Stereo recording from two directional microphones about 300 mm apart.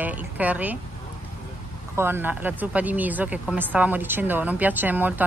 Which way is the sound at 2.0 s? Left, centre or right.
Centre.